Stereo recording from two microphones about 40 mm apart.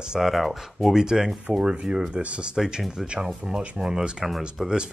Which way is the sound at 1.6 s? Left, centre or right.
Right.